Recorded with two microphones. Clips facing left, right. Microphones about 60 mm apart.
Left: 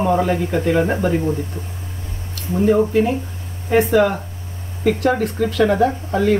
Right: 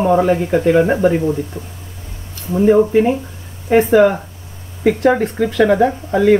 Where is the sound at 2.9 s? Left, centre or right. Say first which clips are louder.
Right 4 dB; right.